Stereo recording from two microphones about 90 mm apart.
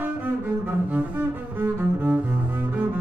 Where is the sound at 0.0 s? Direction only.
20° right (ahead or behind).